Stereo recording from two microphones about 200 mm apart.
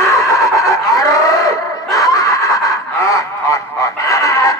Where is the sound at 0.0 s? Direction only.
15° left (ahead or behind).